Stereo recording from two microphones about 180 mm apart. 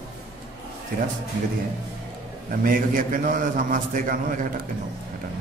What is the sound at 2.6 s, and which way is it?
A man's voice, 50° right (ahead or behind).